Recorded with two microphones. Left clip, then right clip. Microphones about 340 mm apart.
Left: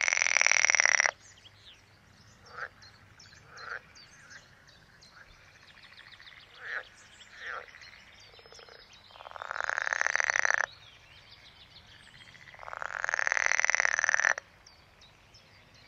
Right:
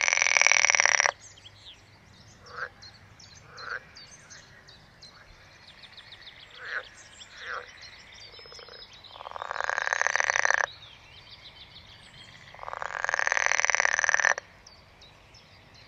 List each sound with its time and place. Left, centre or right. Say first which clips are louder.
0.0 s frog: right 4 dB; left
2.8 s frog: right 4 dB; centre
5.8 s a sound: right 3 dB; centre
6.6 s frog: right 3 dB; right
8.9 s frog: right 5 dB; left
12.5 s frog: right 3 dB; left